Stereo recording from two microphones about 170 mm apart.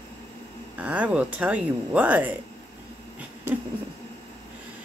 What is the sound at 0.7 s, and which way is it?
Speech, 10° right (ahead or behind).